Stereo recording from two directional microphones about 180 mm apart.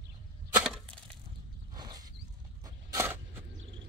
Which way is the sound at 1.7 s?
20° right (ahead or behind).